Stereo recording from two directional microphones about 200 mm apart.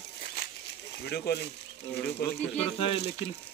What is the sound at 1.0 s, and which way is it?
Speech, 50° left (ahead or behind).